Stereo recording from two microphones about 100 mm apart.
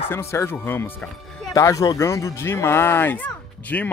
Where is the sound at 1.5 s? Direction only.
35° left (ahead or behind).